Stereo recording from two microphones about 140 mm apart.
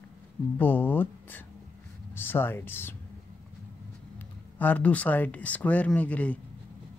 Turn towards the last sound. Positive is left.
turn(degrees=10)  # may be behind; listen again after turning